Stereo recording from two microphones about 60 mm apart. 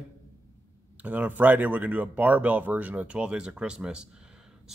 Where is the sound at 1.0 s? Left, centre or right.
Right.